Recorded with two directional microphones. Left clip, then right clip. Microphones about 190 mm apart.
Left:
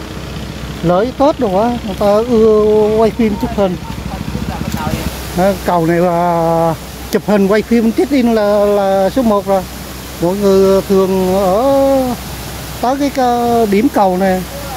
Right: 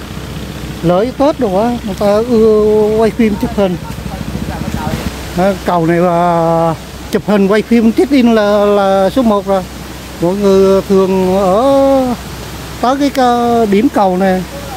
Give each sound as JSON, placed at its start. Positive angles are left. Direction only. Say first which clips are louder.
{"t": 0.8, "sound": "speech", "louder": "even", "side_deg": 0}
{"t": 5.4, "sound": "speech", "louder": "even", "side_deg": -5}
{"t": 13.7, "sound": "speech", "louder": "right 1 dB", "side_deg": -5}